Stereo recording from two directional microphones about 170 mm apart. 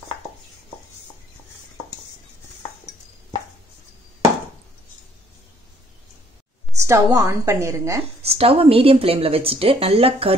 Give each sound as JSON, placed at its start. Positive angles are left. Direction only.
{"t": 6.8, "sound": "a woman's voice", "side_deg": -20}
{"t": 8.0, "sound": "speech", "side_deg": -35}